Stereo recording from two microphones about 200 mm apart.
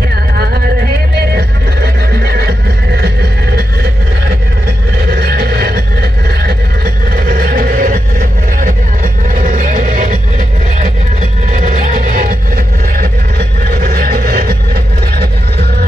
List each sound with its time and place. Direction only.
1.3 s neigh: 50° right (ahead or behind)
5.1 s vehicle: 50° right (ahead or behind)
7.2 s a sound: 50° right (ahead or behind)
9.3 s music: 40° right (ahead or behind)
11.5 s music: 40° right (ahead or behind)
13.7 s vehicle: 50° right (ahead or behind)